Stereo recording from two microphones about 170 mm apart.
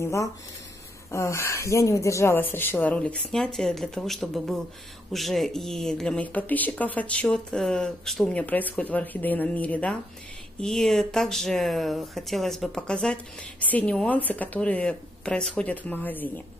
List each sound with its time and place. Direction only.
0.0 s speech: 15° left (ahead or behind)